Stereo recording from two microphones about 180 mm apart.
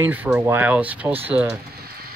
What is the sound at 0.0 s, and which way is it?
Speech, 10° right (ahead or behind).